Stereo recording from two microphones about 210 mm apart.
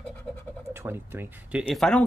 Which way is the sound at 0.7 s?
10° right (ahead or behind).